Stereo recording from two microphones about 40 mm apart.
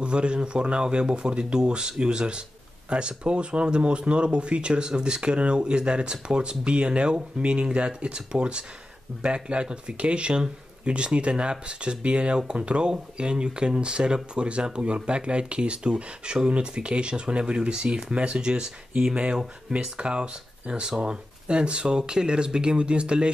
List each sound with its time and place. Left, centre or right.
0.0 s speech: right